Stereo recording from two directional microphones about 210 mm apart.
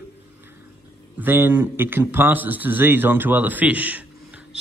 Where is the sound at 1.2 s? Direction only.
10° right (ahead or behind).